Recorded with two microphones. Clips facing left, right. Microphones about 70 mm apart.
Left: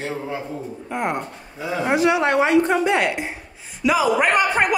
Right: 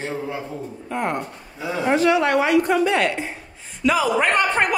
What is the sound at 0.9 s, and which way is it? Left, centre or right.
Speech, centre.